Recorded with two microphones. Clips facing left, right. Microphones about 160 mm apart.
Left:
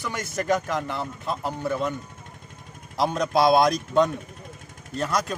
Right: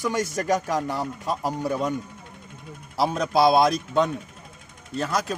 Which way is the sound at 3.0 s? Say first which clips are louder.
Right 1 dB; 5° right (ahead or behind).